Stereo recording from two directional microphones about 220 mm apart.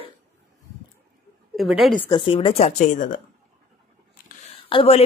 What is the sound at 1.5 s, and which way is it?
Speech, centre (ahead or behind).